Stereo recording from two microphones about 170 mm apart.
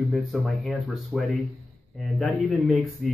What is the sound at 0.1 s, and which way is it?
Speech, centre (ahead or behind).